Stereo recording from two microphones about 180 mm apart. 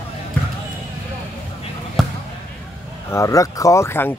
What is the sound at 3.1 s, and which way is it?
Speech, 15° left (ahead or behind).